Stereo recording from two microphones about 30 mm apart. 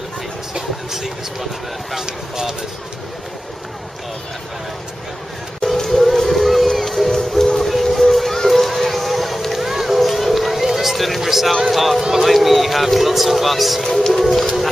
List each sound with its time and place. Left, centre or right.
0.6 s speech: centre
5.6 s music: centre
7.5 s a sound: centre
11.7 s speech: centre
12.0 s speech: centre
12.3 s speech: centre